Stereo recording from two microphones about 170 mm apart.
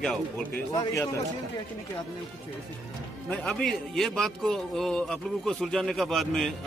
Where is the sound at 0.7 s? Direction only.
20° left (ahead or behind).